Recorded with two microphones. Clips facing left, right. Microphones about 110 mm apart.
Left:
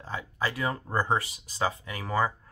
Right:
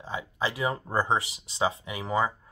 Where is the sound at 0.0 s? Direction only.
20° right (ahead or behind).